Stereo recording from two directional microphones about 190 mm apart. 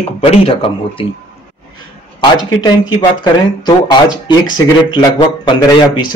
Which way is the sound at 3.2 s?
25° left (ahead or behind).